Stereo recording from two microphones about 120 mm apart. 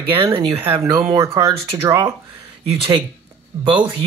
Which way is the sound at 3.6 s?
45° right (ahead or behind).